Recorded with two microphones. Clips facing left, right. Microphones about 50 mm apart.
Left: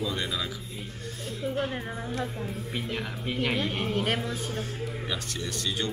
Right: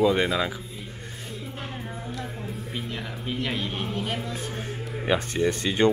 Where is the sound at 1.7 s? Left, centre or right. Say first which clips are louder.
Left 2 dB; centre.